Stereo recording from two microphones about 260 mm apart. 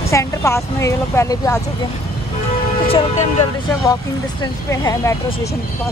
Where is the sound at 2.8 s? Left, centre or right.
Left.